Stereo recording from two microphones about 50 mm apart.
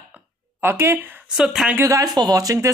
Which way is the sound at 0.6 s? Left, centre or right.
Right.